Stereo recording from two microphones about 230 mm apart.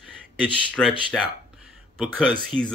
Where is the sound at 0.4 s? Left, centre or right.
Centre.